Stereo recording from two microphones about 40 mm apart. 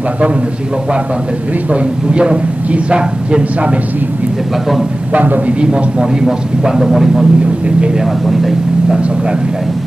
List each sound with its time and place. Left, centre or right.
1.7 s a man's voice: right
5.1 s a man's voice: right
5.6 s a man's voice: right
6.2 s speech: centre